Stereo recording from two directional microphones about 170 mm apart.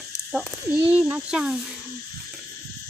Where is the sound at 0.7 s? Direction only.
10° right (ahead or behind).